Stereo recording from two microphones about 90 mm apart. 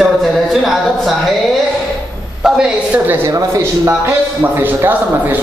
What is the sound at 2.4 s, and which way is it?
Speech, 10° right (ahead or behind).